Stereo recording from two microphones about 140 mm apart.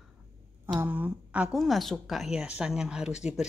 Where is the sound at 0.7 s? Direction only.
10° right (ahead or behind).